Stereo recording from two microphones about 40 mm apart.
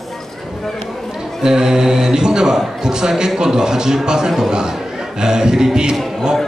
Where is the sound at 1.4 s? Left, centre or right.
Centre.